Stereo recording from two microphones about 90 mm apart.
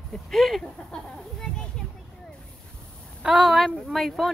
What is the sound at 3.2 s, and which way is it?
Speech, 5° right (ahead or behind).